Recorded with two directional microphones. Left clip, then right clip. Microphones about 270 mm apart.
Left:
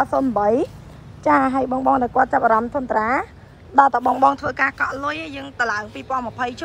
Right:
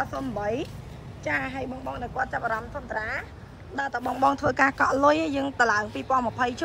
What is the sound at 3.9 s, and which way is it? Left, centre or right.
Speech, centre.